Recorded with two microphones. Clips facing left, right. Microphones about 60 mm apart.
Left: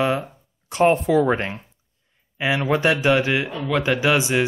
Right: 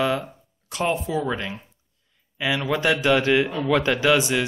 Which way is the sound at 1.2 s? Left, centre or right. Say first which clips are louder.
Left 6 dB; left.